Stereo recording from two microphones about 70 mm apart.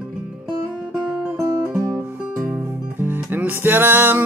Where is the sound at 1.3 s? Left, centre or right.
Right.